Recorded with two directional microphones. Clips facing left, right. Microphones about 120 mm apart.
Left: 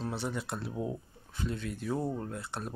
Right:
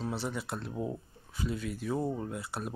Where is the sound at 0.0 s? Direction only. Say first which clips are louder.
Even; centre (ahead or behind).